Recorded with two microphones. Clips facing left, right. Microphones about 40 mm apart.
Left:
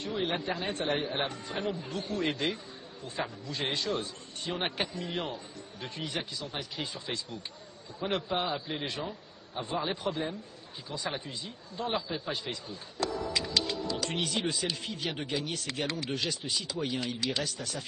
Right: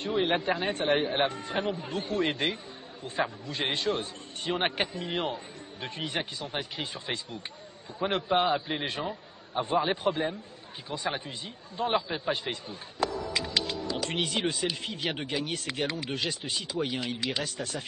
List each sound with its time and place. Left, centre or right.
0.0 s a man's voice: right
13.3 s music: centre
14.2 s a man's voice: right
15.0 s a man's voice: right
15.9 s a man's voice: centre
16.3 s a man's voice: right
16.8 s speech: centre
17.5 s a man's voice: right